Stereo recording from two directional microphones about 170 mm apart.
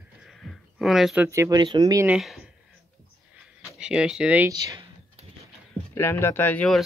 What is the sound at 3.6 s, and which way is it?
Speech, 5° right (ahead or behind).